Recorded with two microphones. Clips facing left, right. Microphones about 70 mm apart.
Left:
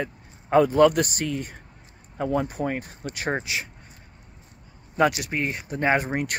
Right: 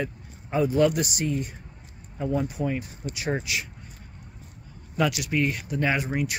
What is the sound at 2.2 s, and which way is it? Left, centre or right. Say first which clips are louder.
Speech: left 2 dB; left.